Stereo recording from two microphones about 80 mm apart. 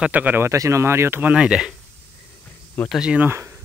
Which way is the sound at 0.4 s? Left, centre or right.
Right.